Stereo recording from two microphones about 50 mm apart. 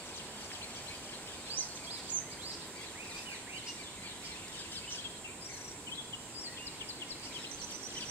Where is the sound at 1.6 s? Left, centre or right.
Left.